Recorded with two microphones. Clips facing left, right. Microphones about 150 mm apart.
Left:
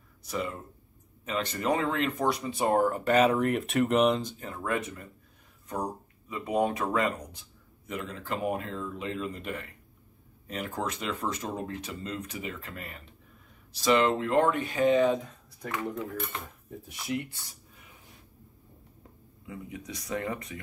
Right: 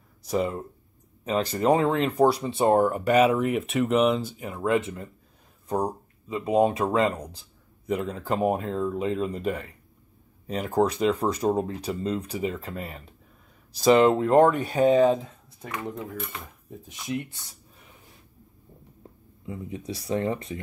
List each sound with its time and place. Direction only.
0.3 s speech: 35° right (ahead or behind)
16.8 s speech: 20° right (ahead or behind)
19.4 s speech: 30° right (ahead or behind)